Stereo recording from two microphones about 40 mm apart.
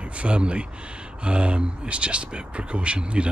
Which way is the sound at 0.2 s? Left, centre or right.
Right.